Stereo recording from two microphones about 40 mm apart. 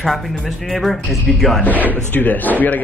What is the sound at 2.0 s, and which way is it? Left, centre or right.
Speech, left.